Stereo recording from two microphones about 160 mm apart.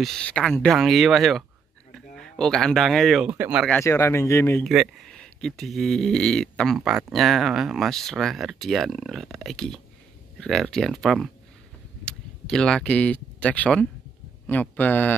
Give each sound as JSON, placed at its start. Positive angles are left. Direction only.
{"t": 0.0, "sound": "speech", "side_deg": 5}
{"t": 3.3, "sound": "speech", "side_deg": -10}
{"t": 3.8, "sound": "speech", "side_deg": 15}
{"t": 4.6, "sound": "speech", "side_deg": 0}